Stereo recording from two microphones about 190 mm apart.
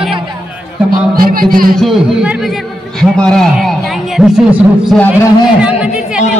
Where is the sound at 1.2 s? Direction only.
50° right (ahead or behind).